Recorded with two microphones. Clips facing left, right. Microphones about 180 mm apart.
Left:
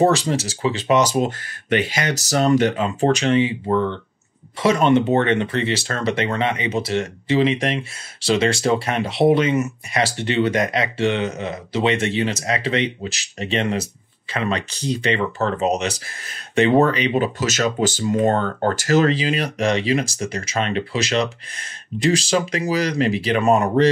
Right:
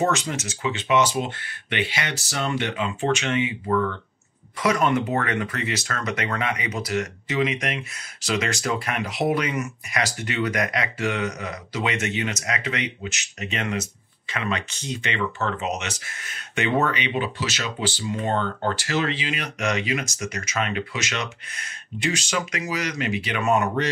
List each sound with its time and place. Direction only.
0.0 s speech: 35° left (ahead or behind)